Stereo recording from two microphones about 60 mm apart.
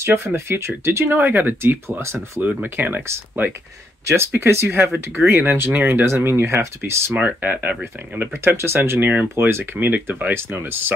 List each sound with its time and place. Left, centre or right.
0.0 s speech: right
2.4 s speech: right
4.0 s speech: right
7.2 s speech: right
8.2 s speech: right
9.0 s speech: right
9.3 s speech: right